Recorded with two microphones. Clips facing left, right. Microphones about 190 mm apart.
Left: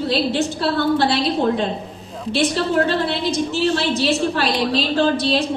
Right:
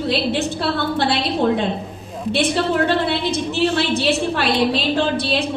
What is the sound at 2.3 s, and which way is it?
A woman's voice, 55° right (ahead or behind).